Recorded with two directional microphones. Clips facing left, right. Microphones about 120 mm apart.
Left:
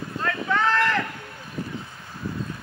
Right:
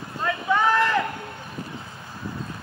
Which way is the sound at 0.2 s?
15° right (ahead or behind).